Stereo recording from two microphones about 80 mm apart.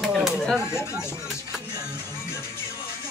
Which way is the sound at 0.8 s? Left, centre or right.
Left.